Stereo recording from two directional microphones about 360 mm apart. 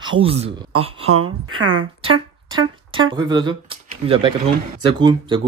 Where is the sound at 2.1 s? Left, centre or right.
Centre.